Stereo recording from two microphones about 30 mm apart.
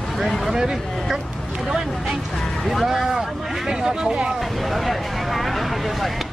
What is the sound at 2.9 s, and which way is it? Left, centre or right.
Speech, centre.